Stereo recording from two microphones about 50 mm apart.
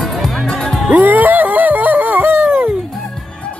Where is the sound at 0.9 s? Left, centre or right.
Right.